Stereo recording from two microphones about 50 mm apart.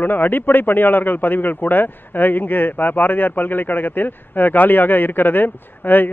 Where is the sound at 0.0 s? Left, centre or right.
Left.